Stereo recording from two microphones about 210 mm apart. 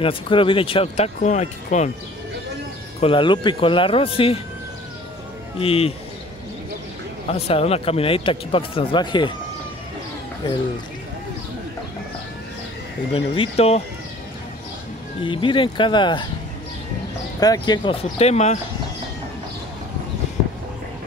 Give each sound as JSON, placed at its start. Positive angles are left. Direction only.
{"t": 0.0, "sound": "speech", "side_deg": 25}
{"t": 3.0, "sound": "speech", "side_deg": 25}
{"t": 5.6, "sound": "speech", "side_deg": 30}
{"t": 7.2, "sound": "speech", "side_deg": 30}
{"t": 13.1, "sound": "speech", "side_deg": 25}
{"t": 15.2, "sound": "speech", "side_deg": 25}
{"t": 17.4, "sound": "speech", "side_deg": 20}